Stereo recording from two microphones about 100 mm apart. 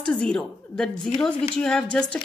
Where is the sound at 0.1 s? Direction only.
10° left (ahead or behind).